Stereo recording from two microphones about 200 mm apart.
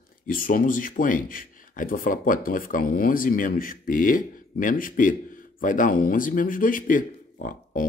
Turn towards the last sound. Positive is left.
turn(degrees=45)  # may be behind; listen again after turning